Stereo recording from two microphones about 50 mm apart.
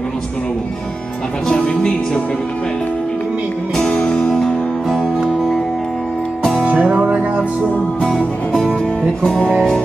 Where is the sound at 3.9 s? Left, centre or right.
Left.